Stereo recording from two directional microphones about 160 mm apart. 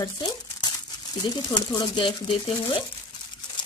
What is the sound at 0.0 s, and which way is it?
Crumpling, 25° left (ahead or behind).